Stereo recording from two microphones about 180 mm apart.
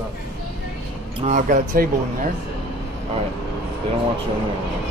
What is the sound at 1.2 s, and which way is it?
Speech, 45° right (ahead or behind).